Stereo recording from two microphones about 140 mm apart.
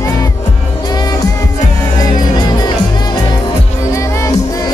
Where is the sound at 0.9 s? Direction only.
30° left (ahead or behind).